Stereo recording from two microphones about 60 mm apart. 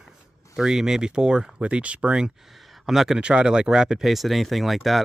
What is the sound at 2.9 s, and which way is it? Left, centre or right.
Speech, centre.